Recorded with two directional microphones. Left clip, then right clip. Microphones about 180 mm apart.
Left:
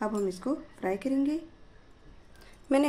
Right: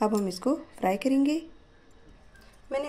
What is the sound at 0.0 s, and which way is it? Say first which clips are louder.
Speech: right 4 dB; 35° right (ahead or behind).